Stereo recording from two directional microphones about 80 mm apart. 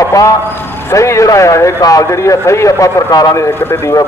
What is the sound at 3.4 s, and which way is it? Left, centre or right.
Speech, left.